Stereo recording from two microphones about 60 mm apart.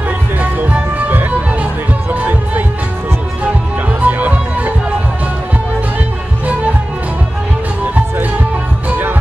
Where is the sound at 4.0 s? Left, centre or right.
Right.